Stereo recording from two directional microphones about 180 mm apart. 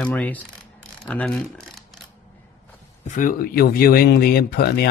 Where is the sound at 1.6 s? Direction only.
Centre (ahead or behind).